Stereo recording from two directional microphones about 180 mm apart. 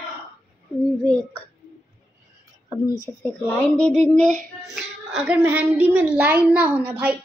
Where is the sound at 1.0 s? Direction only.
5° left (ahead or behind).